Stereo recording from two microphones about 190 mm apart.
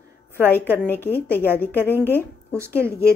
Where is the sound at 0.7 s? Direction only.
10° left (ahead or behind).